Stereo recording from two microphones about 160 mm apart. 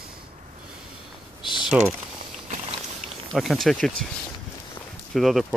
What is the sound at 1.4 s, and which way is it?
Typing, 30° left (ahead or behind).